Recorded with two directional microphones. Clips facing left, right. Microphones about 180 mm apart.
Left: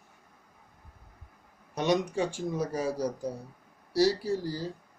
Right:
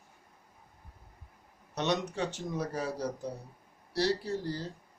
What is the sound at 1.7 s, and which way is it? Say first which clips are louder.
Speech: left 4 dB; 10° left (ahead or behind).